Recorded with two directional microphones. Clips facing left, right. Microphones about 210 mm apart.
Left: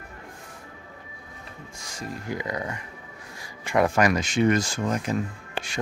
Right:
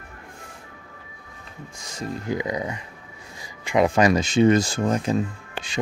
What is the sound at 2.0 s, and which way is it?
Speech, 20° right (ahead or behind).